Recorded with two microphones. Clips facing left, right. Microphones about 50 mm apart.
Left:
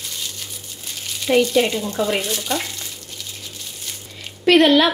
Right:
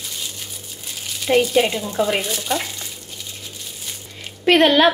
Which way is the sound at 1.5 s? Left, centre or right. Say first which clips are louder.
Even; centre.